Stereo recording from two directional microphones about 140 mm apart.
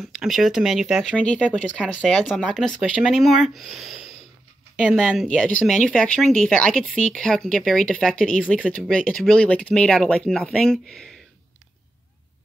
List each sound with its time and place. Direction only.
0.0 s speech: centre (ahead or behind)
8.9 s speech: 5° left (ahead or behind)